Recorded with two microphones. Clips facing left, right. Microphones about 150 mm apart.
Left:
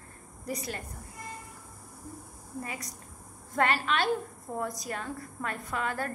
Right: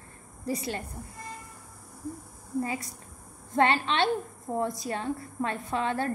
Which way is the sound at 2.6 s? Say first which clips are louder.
Right 8 dB; 25° right (ahead or behind).